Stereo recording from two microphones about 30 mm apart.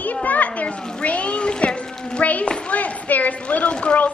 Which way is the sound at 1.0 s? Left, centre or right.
Left.